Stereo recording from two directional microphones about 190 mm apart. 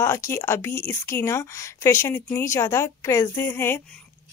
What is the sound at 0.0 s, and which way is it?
A woman's voice, 15° left (ahead or behind).